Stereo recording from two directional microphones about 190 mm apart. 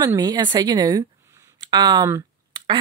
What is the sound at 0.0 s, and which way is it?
Speech, 20° right (ahead or behind).